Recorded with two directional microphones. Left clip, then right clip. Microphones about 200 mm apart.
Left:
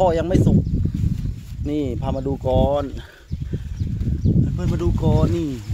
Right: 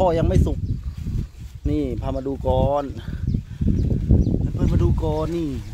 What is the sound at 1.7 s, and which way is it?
Speech, 5° left (ahead or behind).